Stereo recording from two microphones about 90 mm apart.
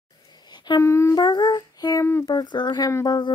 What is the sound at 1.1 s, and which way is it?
Child singing, 55° left (ahead or behind).